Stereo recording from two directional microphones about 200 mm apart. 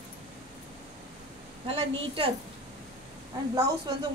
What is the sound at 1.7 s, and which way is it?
Speech, 25° right (ahead or behind).